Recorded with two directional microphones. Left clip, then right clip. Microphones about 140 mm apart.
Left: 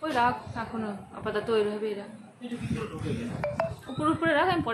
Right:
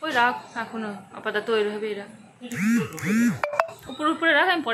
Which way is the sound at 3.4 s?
90° right.